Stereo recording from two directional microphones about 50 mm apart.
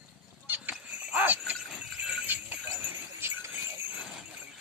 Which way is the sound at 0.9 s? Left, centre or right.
Right.